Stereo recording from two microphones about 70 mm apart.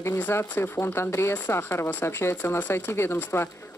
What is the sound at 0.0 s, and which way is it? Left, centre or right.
Speech, left.